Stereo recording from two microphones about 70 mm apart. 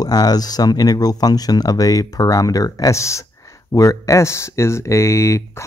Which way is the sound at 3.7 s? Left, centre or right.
Left.